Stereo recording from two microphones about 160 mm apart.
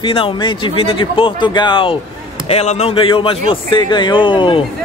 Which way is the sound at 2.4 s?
40° left (ahead or behind).